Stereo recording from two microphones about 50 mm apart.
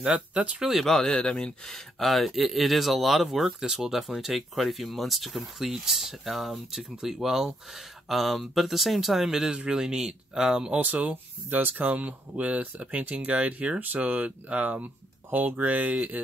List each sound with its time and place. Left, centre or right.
0.7 s speech: centre
1.0 s speech: centre
11.1 s speech: right